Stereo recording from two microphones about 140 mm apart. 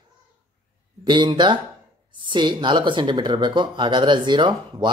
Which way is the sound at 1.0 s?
35° right (ahead or behind).